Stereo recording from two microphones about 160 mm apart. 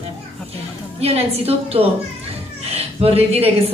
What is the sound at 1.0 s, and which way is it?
A woman's voice, 40° right (ahead or behind).